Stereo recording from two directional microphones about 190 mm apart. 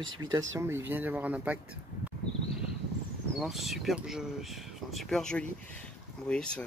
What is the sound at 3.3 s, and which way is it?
Speech, centre (ahead or behind).